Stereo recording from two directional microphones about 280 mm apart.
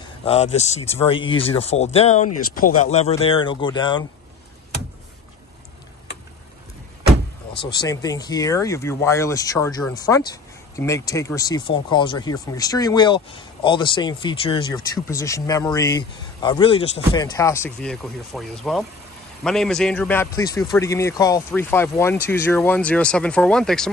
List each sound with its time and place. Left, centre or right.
0.2 s speech: left
7.6 s speech: centre